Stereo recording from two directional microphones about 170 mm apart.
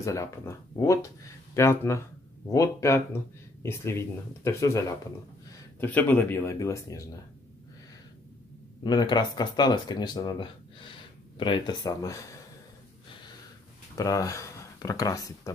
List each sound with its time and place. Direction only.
0.0 s speech: 15° left (ahead or behind)
8.8 s speech: 25° left (ahead or behind)
13.9 s speech: 20° left (ahead or behind)